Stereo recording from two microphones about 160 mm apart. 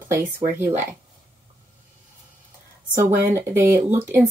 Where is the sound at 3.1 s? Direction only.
15° right (ahead or behind).